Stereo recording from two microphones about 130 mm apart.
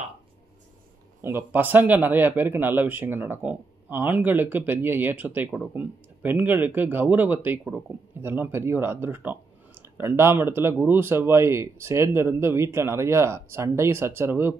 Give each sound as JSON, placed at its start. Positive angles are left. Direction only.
{"t": 1.2, "sound": "speech", "side_deg": -15}